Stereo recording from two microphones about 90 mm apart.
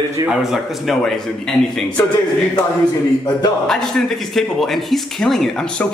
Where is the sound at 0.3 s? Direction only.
5° right (ahead or behind).